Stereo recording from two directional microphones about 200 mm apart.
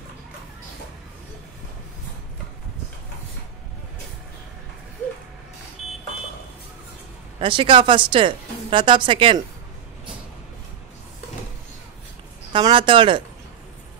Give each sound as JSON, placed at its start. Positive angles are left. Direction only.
{"t": 7.3, "sound": "speech", "side_deg": -25}
{"t": 12.5, "sound": "speech", "side_deg": -25}